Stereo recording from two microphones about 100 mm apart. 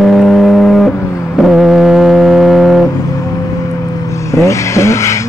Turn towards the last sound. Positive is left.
turn(degrees=30)  # may be behind; listen again after turning